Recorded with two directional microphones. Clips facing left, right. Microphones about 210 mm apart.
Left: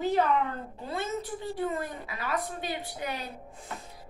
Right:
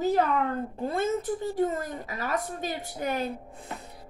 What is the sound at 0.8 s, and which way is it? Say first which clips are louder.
A woman's voice: right 5 dB; 50° right (ahead or behind).